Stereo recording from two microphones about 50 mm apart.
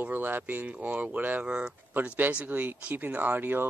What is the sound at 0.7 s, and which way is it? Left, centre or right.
Speech, right.